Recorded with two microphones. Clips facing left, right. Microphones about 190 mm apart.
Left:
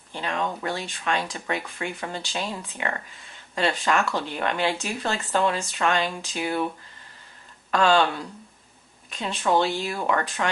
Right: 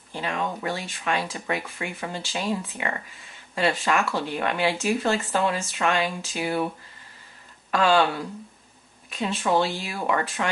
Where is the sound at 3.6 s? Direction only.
15° right (ahead or behind).